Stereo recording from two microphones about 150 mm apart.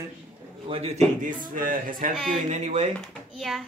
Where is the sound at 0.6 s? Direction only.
40° right (ahead or behind); by 2.1 s 65° right (ahead or behind).